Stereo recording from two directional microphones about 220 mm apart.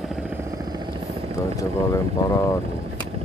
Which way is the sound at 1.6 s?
15° left (ahead or behind).